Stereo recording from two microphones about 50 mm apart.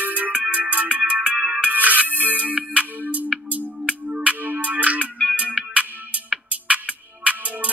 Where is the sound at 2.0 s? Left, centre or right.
Left.